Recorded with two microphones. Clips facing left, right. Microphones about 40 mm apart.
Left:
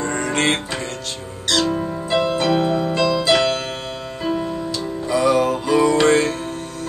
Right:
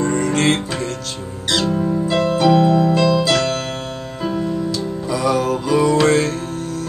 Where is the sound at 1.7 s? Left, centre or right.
Centre.